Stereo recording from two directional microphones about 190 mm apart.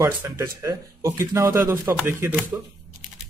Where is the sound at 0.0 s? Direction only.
15° right (ahead or behind).